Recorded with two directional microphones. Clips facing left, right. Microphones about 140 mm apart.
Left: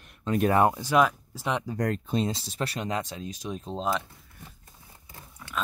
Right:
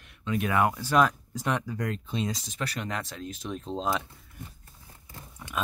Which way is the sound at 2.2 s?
30° left (ahead or behind).